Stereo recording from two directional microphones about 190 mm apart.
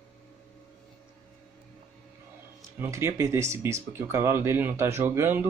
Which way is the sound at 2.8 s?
15° right (ahead or behind).